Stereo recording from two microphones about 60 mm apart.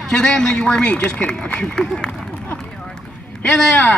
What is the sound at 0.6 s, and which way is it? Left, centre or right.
Speech, left.